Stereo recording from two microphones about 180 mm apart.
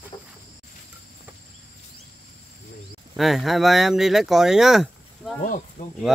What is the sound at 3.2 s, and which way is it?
Speech, centre (ahead or behind).